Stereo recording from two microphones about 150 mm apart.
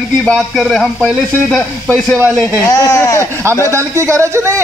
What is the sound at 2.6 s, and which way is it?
Speech, 20° left (ahead or behind).